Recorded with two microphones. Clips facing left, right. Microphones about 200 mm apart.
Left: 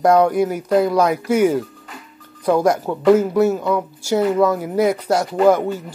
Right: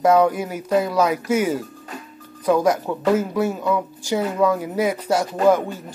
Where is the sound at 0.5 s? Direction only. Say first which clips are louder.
Left 4 dB; 10° right (ahead or behind).